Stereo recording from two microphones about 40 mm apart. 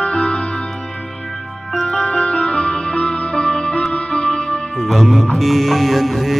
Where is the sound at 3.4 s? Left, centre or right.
Centre.